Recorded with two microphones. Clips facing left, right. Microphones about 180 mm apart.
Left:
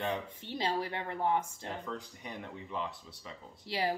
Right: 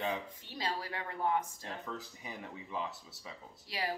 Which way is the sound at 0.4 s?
25° left (ahead or behind).